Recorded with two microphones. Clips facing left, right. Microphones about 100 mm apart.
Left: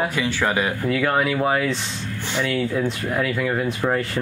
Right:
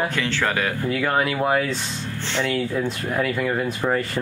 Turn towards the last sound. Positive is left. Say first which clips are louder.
# left 1 dB
turn(degrees=0)  # may be behind; listen again after turning